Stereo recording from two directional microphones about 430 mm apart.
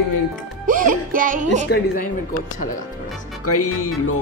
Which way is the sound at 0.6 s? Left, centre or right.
Centre.